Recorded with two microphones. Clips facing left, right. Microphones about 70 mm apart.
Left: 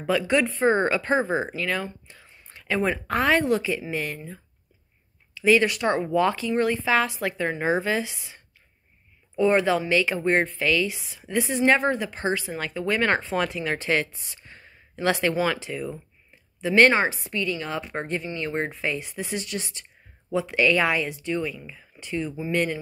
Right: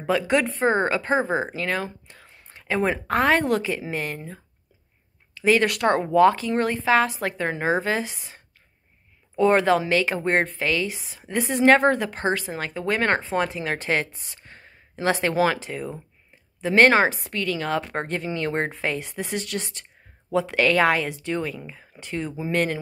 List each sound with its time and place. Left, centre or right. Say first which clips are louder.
0.0 s a woman's voice: right 1 dB; right
1.5 s a woman's voice: right 1 dB; right
2.7 s a woman's voice: right 2 dB; right
5.7 s a woman's voice: right 3 dB; right
6.1 s a woman's voice: right 7 dB; right
9.4 s a woman's voice: right 2 dB; right
13.2 s a woman's voice: right 1 dB; right
15.3 s a woman's voice: right 3 dB; right
15.6 s a woman's voice: even; right
17.1 s a woman's voice: right 1 dB; right